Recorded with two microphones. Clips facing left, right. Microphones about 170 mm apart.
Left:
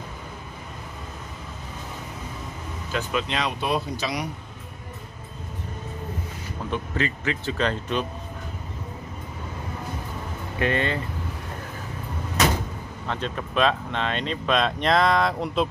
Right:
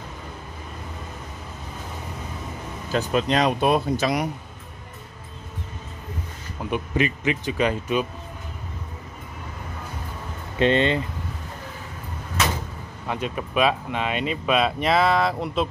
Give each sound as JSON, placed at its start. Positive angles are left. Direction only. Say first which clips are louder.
{"t": 2.9, "sound": "speech", "louder": "right 5 dB", "side_deg": -35}
{"t": 6.7, "sound": "speech", "louder": "right 4 dB", "side_deg": -15}
{"t": 10.6, "sound": "speech", "louder": "right 5 dB", "side_deg": -20}
{"t": 13.0, "sound": "speech", "louder": "right 2 dB", "side_deg": -10}